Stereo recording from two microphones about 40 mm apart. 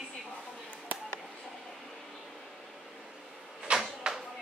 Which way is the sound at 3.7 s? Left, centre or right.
Right.